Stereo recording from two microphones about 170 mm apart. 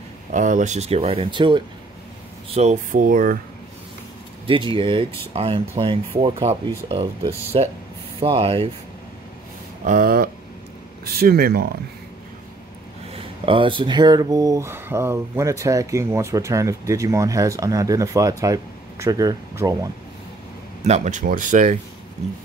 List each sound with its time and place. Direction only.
0.3 s speech: 45° right (ahead or behind); by 1.6 s 30° right (ahead or behind)
2.5 s speech: 40° right (ahead or behind)
4.5 s speech: 30° right (ahead or behind)
9.8 s speech: 55° right (ahead or behind)
13.1 s speech: 30° right (ahead or behind)
20.8 s speech: 40° right (ahead or behind)